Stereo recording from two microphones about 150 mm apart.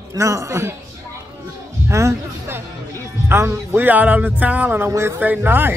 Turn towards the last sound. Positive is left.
turn(degrees=-15)  # may be behind; listen again after turning